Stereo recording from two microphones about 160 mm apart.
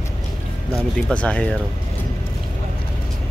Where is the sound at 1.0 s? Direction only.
5° left (ahead or behind).